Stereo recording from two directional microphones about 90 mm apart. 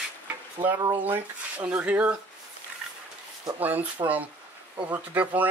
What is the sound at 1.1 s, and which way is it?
Speech, 20° right (ahead or behind).